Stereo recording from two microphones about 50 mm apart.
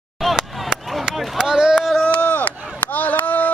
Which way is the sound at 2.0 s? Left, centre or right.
Left.